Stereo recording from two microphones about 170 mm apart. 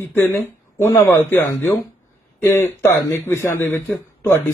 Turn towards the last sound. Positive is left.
turn(degrees=15)  # may be behind; listen again after turning